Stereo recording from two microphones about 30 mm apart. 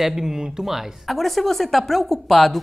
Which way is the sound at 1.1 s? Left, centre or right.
Centre.